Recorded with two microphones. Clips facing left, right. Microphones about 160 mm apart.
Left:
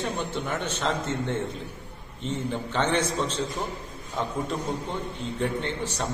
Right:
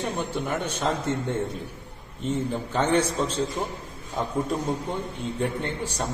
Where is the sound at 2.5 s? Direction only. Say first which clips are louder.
Right 2 dB; 10° right (ahead or behind).